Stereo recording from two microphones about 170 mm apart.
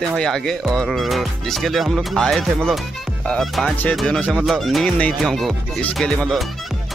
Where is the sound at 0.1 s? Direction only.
Centre (ahead or behind).